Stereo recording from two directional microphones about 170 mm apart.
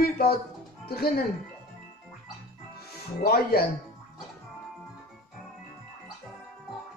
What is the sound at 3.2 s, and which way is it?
Speech, 65° left (ahead or behind).